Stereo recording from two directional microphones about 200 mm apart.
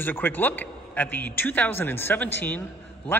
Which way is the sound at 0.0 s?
10° left (ahead or behind).